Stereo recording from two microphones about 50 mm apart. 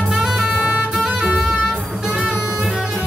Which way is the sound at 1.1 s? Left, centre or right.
Centre.